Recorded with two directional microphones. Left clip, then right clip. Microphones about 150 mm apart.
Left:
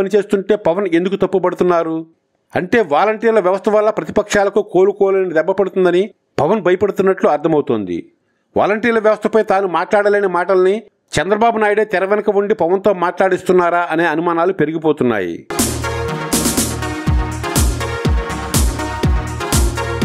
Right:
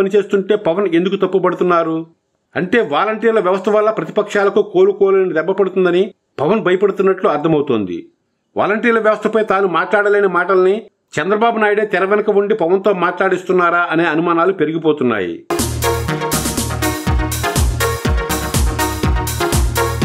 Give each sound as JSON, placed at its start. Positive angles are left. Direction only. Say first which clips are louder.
{"t": 0.0, "sound": "speech", "louder": "right 1 dB", "side_deg": 40}
{"t": 15.5, "sound": "music", "louder": "right 3 dB", "side_deg": 0}